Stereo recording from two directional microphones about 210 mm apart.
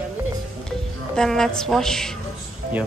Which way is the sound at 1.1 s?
Centre (ahead or behind).